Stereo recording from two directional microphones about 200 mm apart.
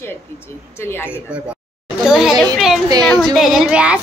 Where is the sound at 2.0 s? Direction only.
Centre (ahead or behind).